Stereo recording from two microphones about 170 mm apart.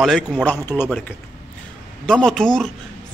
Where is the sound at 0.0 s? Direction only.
Centre (ahead or behind).